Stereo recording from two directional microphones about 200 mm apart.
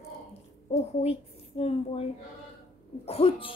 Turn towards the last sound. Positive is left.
turn(degrees=25)  # may be behind; listen again after turning